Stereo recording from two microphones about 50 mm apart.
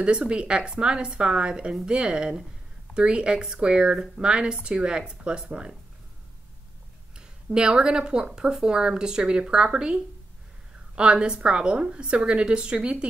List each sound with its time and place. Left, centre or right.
0.0 s speech: right
7.2 s speech: centre